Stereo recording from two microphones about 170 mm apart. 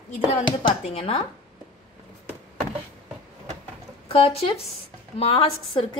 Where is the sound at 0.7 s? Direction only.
35° left (ahead or behind).